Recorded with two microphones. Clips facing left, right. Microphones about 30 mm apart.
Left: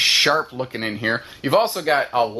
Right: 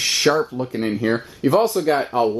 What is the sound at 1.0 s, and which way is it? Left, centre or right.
Speech, left.